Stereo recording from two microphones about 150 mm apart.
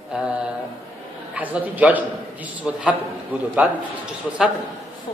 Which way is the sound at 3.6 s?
5° right (ahead or behind).